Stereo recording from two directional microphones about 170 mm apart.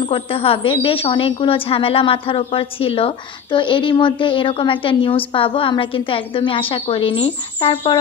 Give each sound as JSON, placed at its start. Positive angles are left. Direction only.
{"t": 0.0, "sound": "a woman's voice", "side_deg": 30}